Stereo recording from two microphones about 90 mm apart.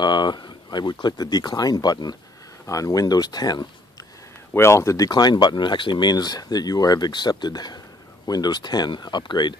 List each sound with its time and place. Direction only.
0.0 s speech: 55° left (ahead or behind)
4.6 s speech: 30° left (ahead or behind); by 9.6 s 55° left (ahead or behind)